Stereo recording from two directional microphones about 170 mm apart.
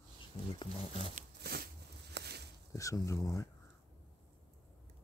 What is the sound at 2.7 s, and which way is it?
Speech, 20° left (ahead or behind).